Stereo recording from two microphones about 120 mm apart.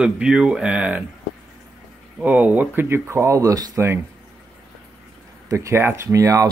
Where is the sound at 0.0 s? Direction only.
5° right (ahead or behind).